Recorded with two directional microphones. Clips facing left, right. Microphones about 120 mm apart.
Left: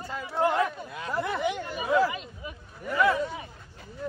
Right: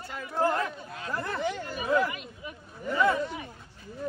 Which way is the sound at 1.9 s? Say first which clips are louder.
Left 2 dB; 30° left (ahead or behind).